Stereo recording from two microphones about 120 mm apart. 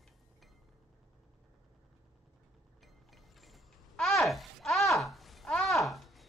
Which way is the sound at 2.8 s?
Centre (ahead or behind).